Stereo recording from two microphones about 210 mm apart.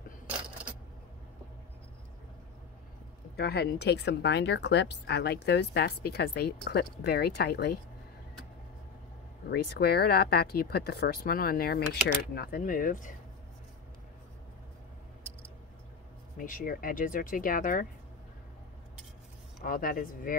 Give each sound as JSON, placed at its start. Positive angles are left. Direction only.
{"t": 3.3, "sound": "speech", "side_deg": 50}
{"t": 9.5, "sound": "speech", "side_deg": 50}
{"t": 16.3, "sound": "speech", "side_deg": 40}
{"t": 19.6, "sound": "speech", "side_deg": 45}